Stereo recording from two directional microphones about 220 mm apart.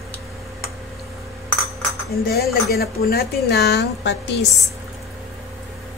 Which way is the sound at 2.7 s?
45° left (ahead or behind).